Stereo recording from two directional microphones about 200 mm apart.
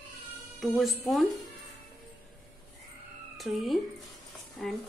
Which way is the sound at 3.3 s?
Centre (ahead or behind).